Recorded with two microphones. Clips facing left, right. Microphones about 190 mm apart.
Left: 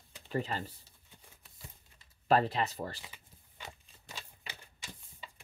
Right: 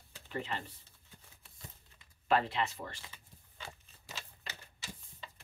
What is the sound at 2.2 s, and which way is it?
Speech, 40° left (ahead or behind).